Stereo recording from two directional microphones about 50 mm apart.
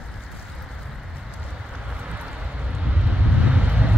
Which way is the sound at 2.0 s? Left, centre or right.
Right.